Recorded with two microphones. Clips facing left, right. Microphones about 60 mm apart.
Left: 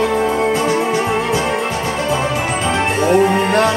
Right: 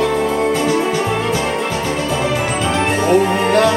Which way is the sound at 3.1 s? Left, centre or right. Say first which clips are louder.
Left 1 dB; left.